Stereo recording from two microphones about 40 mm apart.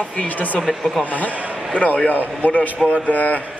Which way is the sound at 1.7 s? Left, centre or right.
Left.